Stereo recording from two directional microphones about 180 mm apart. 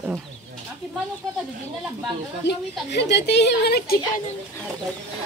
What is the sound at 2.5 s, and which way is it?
Speech, 70° left (ahead or behind).